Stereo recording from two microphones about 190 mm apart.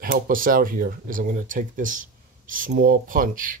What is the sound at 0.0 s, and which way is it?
Speech, 50° right (ahead or behind).